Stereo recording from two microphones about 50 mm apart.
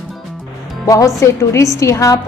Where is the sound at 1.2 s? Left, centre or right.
Left.